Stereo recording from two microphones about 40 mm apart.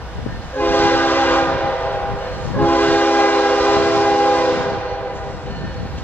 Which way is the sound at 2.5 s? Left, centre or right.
Left.